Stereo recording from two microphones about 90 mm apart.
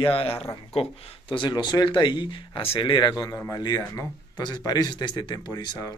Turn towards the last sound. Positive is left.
turn(degrees=50)  # may be behind; listen again after turning